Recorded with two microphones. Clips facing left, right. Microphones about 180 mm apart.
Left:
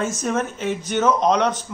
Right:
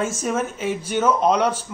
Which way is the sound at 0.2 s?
5° right (ahead or behind).